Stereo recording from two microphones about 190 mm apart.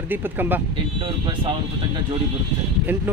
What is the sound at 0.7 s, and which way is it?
Speech, 25° right (ahead or behind).